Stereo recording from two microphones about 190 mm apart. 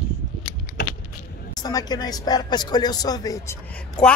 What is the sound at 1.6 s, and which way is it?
Speech, 20° left (ahead or behind).